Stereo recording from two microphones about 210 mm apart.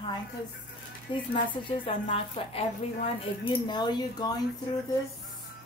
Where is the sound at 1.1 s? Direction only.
25° left (ahead or behind).